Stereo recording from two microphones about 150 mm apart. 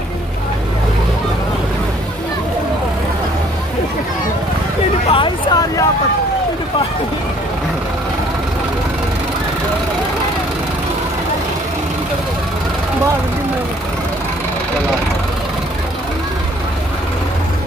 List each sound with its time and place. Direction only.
5.1 s hubbub: 30° left (ahead or behind)